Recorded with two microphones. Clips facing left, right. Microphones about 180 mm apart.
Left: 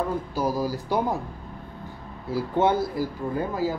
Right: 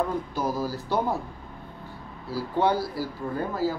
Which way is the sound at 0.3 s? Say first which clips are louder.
Left 2 dB; 10° left (ahead or behind).